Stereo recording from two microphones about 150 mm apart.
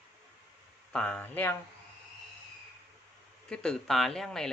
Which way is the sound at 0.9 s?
10° left (ahead or behind).